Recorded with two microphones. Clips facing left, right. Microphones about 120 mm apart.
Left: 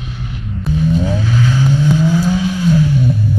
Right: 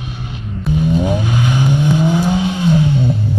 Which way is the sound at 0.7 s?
15° right (ahead or behind).